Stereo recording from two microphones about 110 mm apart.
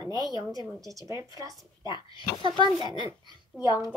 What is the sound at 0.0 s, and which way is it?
A woman's voice, 40° right (ahead or behind).